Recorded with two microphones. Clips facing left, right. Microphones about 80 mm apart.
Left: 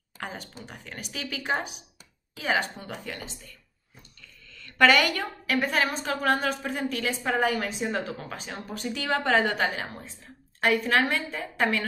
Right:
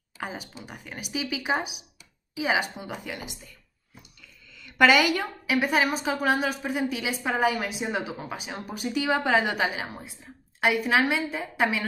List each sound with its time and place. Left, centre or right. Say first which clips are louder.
0.2 s a woman's voice: right 2 dB; centre